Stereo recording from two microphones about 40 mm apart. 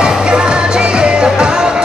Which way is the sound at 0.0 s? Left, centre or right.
Right.